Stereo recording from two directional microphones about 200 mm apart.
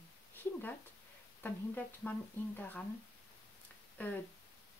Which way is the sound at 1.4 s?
10° left (ahead or behind).